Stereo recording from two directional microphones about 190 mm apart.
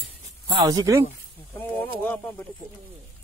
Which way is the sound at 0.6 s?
20° right (ahead or behind).